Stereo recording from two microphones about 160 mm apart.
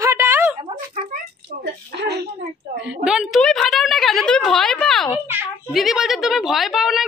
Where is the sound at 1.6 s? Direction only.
90° right.